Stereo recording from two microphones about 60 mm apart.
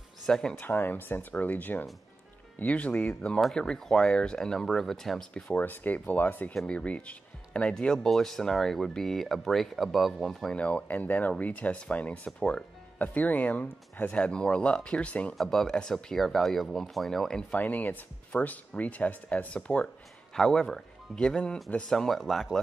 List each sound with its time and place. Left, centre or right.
0.3 s speech: centre
0.6 s speech: left; by 5.3 s centre
5.6 s speech: left; by 10.5 s centre
10.5 s speech: left
14.2 s speech: centre
15.3 s speech: centre
17.6 s speech: left
20.3 s speech: centre
21.9 s speech: centre